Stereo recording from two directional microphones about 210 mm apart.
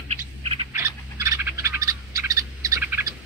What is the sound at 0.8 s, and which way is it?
Frog, 15° right (ahead or behind).